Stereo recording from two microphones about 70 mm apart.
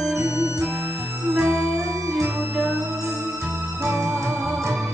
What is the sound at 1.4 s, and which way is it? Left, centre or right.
Music, right.